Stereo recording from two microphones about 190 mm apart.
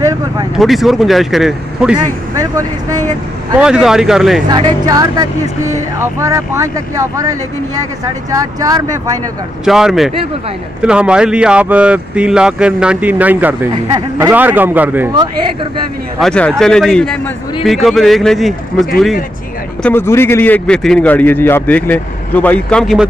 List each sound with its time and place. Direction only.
0.6 s speech: centre (ahead or behind)
2.3 s speech: 15° right (ahead or behind)
3.5 s speech: 5° right (ahead or behind)
4.5 s speech: 20° right (ahead or behind)
9.7 s speech: centre (ahead or behind)
16.2 s speech: 5° left (ahead or behind)
19.8 s a man's voice: 10° left (ahead or behind)